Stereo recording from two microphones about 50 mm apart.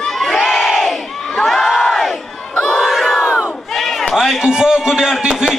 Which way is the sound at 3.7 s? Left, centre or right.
Centre.